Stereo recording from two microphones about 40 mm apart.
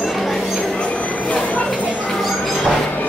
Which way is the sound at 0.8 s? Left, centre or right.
Left.